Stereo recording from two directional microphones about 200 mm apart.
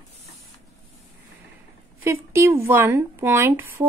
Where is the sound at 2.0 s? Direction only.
15° right (ahead or behind).